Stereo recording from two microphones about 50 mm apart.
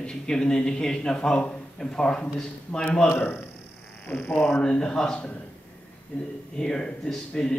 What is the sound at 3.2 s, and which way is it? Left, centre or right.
A man's voice, left.